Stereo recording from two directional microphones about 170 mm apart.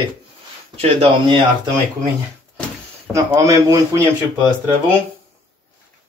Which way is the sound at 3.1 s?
20° right (ahead or behind).